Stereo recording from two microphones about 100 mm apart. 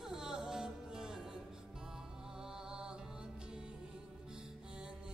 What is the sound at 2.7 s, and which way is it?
Music, 10° right (ahead or behind).